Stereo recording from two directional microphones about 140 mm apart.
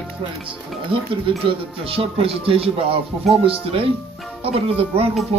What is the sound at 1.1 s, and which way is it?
Speech, 40° right (ahead or behind).